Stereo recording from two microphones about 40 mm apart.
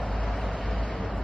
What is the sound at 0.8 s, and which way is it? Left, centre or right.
Vehicle, left.